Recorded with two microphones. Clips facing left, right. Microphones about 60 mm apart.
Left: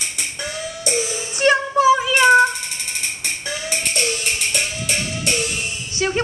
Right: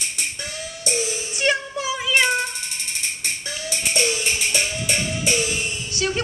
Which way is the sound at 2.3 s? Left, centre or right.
Left.